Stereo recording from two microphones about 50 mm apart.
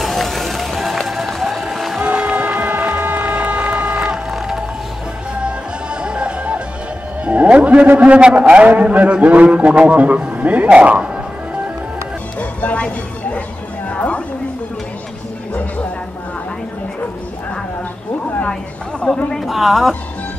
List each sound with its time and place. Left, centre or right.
0.0 s run: centre
2.0 s music: centre
3.2 s vehicle: right
6.0 s music: centre
8.0 s a man's voice: right
12.4 s music: left
13.8 s a sound: left
19.4 s speech: centre